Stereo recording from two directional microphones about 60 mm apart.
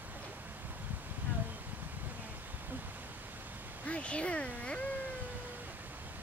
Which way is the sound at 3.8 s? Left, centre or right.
Centre.